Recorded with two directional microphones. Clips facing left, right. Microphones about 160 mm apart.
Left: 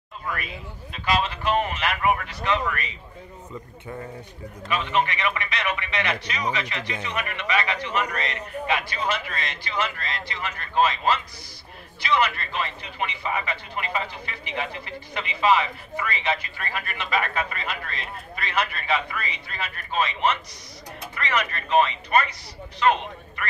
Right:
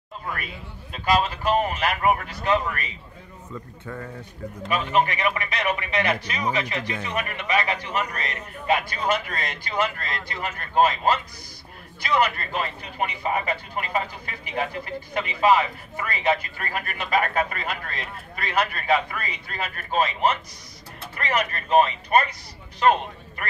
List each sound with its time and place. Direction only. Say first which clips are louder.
0.9 s a man's voice: right 3 dB; 45° right (ahead or behind)
3.8 s speech: even; 20° left (ahead or behind)
4.6 s a man's voice: right 2 dB; 45° right (ahead or behind)